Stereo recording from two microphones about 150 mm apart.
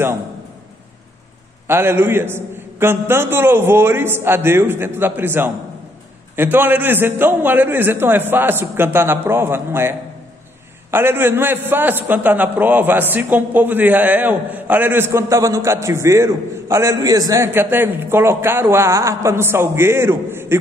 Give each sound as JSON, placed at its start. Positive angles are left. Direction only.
{"t": 1.7, "sound": "a man's voice", "side_deg": -15}